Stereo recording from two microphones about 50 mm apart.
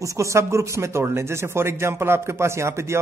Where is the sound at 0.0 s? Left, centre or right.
Right.